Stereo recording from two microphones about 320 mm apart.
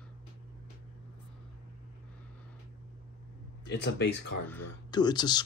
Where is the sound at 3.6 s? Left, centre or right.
Left.